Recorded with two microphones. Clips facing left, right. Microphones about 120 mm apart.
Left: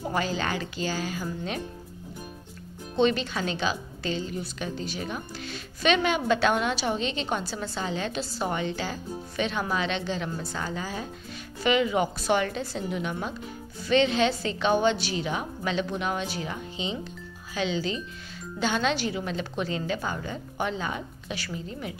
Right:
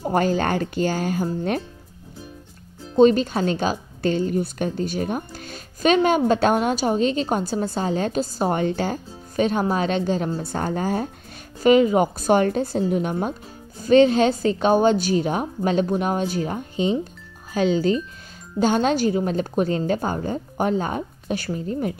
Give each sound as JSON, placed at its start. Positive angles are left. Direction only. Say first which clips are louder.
{"t": 0.0, "sound": "a woman's voice", "louder": "right 8 dB", "side_deg": -50}
{"t": 3.0, "sound": "a woman's voice", "louder": "right 9 dB", "side_deg": -40}